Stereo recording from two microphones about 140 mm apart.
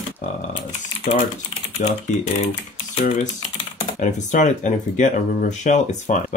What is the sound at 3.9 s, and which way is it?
Speech, 65° left (ahead or behind).